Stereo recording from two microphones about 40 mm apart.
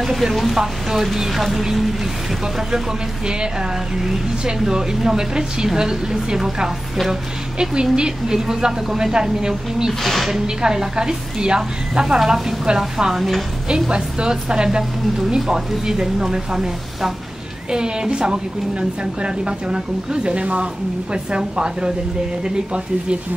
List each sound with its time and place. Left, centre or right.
0.0 s speech: centre
4.0 s a woman's voice: centre
10.0 s speech: centre
10.4 s a woman's voice: centre
13.8 s a woman's voice: right